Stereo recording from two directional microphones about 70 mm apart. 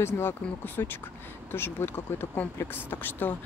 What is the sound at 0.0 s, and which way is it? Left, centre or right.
Speech, left.